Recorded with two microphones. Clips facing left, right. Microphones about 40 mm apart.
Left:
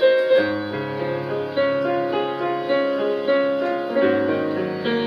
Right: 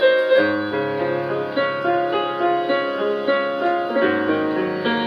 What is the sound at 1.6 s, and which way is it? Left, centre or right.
Music, centre.